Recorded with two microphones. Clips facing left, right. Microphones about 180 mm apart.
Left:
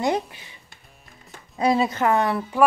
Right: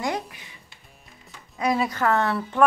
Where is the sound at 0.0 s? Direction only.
25° left (ahead or behind).